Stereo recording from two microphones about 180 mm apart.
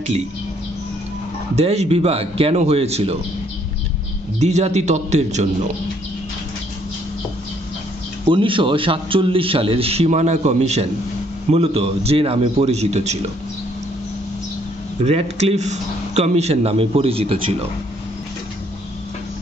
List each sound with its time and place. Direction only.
1.5 s a man's voice: 35° right (ahead or behind)
4.4 s a man's voice: 40° right (ahead or behind)
8.3 s a man's voice: 30° right (ahead or behind)
15.0 s a man's voice: 35° right (ahead or behind)